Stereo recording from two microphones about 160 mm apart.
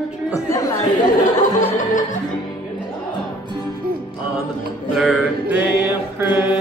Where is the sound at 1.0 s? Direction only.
55° left (ahead or behind).